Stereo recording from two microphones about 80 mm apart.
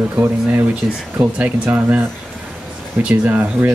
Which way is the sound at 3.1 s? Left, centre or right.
Centre.